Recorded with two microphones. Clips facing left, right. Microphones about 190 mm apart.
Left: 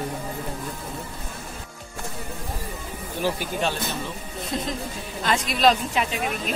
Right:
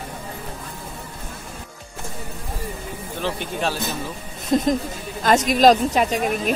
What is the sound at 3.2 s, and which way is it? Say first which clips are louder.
Speech: even; centre (ahead or behind).